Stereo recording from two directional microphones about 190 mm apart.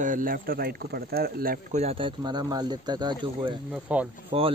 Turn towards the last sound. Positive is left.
turn(degrees=-35)  # may be behind; listen again after turning